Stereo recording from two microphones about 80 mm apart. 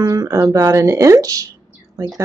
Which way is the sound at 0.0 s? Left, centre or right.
Right.